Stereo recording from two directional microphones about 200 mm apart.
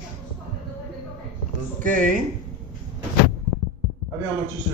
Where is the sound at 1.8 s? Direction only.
40° right (ahead or behind).